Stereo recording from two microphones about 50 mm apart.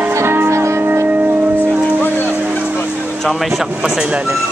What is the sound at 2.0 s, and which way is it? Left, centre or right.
Music, left.